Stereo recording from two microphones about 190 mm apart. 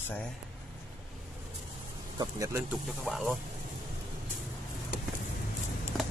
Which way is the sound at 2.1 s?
15° right (ahead or behind).